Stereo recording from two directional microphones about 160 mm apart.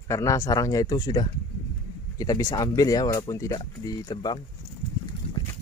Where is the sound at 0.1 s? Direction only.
20° left (ahead or behind).